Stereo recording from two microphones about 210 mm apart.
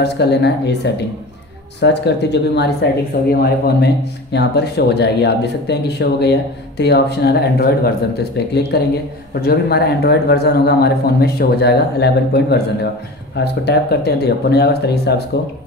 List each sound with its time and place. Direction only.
0.0 s a man's voice: 55° left (ahead or behind)